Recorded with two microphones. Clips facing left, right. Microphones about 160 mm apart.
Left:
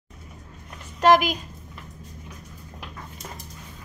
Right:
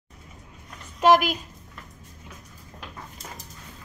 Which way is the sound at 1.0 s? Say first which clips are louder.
Left 1 dB; 5° right (ahead or behind).